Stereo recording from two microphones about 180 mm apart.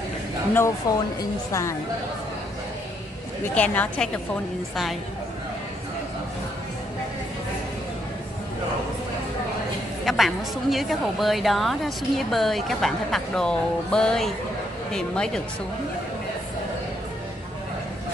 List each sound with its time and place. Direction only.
0.8 s a woman's voice: 20° left (ahead or behind)
3.5 s a woman's voice: 10° left (ahead or behind)
10.0 s a woman's voice: centre (ahead or behind)